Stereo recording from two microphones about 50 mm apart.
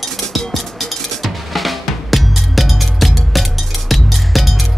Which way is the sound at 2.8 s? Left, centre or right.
Centre.